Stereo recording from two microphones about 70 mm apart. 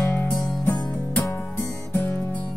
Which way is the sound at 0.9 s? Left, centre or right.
Left.